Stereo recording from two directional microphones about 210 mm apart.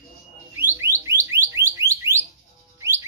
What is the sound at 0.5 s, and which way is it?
Alarm, 10° right (ahead or behind).